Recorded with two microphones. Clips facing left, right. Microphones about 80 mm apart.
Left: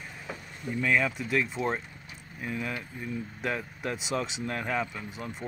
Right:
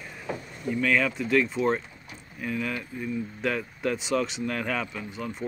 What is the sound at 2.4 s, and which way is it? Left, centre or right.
Speech, centre.